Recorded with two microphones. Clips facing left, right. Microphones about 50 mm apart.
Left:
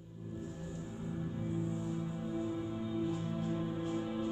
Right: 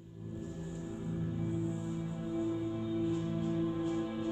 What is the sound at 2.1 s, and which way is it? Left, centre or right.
Music, centre.